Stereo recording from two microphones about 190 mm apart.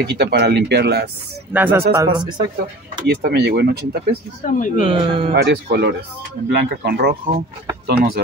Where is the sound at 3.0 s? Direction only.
60° right (ahead or behind).